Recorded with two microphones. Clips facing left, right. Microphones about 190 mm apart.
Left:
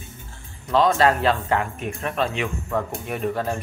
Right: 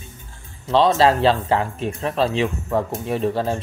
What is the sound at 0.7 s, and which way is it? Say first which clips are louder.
Speech: right 2 dB; 30° right (ahead or behind).